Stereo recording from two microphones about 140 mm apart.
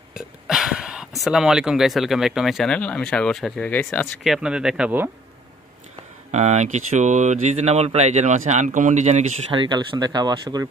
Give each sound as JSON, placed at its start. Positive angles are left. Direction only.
{"t": 0.5, "sound": "speech", "side_deg": -5}
{"t": 4.2, "sound": "speech", "side_deg": -5}
{"t": 6.3, "sound": "speech", "side_deg": -55}
{"t": 9.5, "sound": "speech", "side_deg": -35}